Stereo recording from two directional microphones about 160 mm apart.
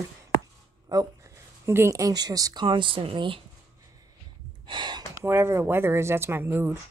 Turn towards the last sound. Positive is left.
turn(degrees=-15)  # may be behind; listen again after turning